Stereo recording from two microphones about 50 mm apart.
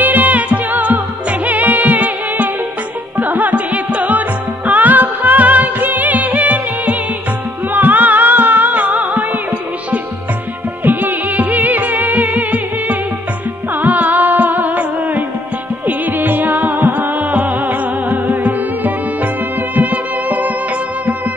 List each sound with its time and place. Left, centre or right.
0.0 s music: right